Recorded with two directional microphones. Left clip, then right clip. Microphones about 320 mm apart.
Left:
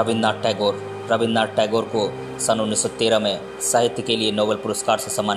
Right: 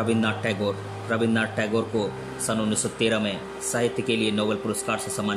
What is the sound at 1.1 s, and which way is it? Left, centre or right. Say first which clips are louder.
Speech: left 5 dB; left.